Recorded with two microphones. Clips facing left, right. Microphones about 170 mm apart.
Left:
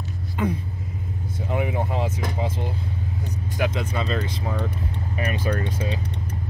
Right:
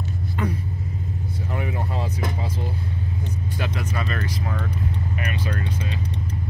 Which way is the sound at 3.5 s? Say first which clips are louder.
Left 5 dB; 20° left (ahead or behind).